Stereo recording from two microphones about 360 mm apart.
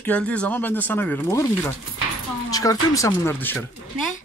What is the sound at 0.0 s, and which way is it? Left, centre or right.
Speech, centre.